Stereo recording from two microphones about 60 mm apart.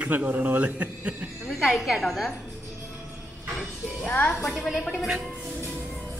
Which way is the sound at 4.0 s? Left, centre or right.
Left.